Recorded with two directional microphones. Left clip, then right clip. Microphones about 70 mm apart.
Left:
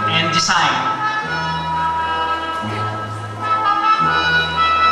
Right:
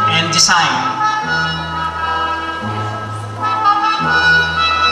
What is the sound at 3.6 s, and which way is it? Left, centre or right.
Music, right.